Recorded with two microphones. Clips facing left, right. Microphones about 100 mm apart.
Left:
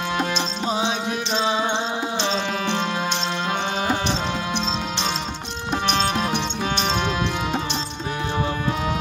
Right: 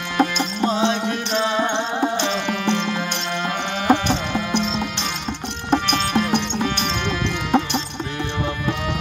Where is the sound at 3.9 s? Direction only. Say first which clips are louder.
Right 5 dB; 55° right (ahead or behind).